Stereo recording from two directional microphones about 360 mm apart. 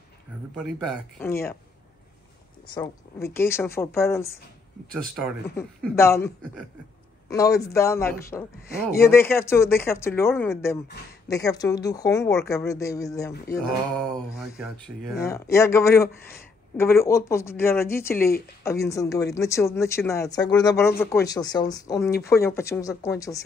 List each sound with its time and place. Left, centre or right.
0.6 s speech: centre
2.6 s speech: centre
8.7 s speech: left
9.1 s speech: centre